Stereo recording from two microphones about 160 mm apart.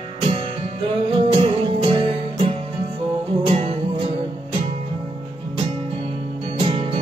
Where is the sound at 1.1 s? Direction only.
35° right (ahead or behind).